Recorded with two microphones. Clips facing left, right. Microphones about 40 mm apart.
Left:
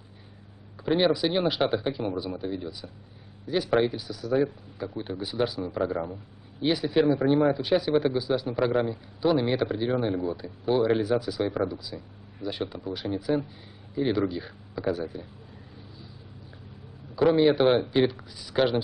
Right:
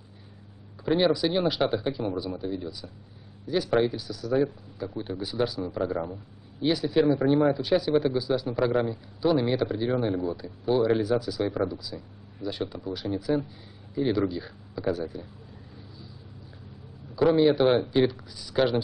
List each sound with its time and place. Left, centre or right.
0.7 s a man's voice: centre
17.1 s a man's voice: centre